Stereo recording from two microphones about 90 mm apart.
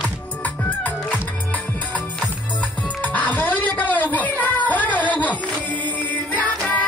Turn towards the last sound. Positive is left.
turn(degrees=15)  # may be behind; listen again after turning